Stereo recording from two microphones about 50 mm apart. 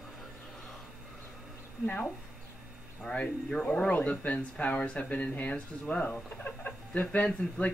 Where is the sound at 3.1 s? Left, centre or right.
Left.